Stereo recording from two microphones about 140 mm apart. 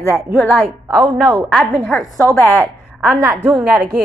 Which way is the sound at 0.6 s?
Centre (ahead or behind).